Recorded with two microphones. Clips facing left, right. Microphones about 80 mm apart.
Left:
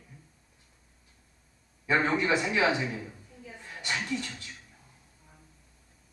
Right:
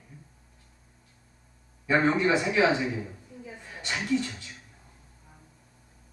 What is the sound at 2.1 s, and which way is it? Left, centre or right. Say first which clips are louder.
Speech: right 3 dB; right.